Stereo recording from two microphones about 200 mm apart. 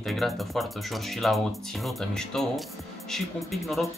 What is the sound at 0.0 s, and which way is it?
Speech, centre (ahead or behind).